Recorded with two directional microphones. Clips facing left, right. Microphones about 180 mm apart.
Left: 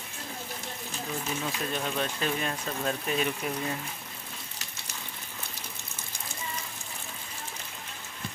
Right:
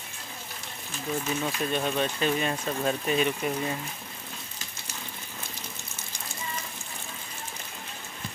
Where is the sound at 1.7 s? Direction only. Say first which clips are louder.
Right 4 dB; centre (ahead or behind).